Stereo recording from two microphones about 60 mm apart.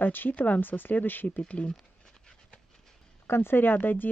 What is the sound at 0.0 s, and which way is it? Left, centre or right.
Speech, left.